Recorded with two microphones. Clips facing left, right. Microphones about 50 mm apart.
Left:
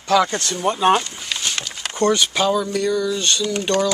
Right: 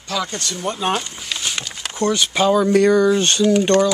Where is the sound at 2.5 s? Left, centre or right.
Right.